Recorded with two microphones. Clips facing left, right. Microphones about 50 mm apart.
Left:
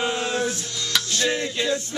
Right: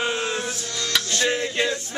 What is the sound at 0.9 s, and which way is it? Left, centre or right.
Music, centre.